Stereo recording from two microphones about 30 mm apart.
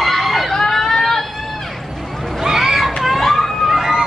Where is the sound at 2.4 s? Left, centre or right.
Centre.